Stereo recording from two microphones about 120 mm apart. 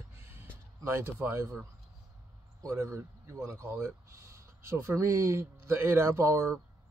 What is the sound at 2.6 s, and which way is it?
Speech, 25° right (ahead or behind).